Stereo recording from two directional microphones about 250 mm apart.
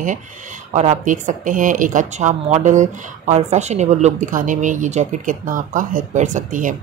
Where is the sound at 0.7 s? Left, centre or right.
Right.